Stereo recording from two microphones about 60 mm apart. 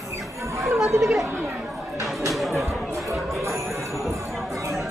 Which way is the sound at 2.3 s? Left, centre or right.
Centre.